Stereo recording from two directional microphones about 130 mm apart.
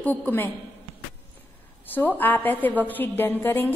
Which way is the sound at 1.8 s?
15° left (ahead or behind).